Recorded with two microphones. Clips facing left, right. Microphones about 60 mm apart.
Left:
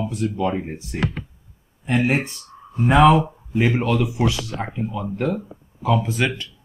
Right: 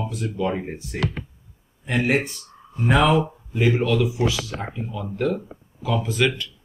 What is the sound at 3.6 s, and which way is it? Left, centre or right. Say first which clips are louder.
Speech: right 1 dB; left.